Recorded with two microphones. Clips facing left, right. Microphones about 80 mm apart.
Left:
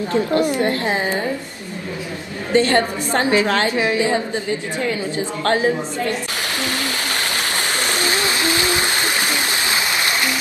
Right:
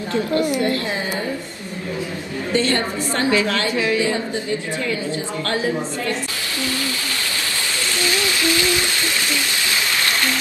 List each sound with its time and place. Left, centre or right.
0.1 s a woman's voice: left
2.5 s a woman's voice: left
5.4 s a woman's voice: left
8.0 s stream: left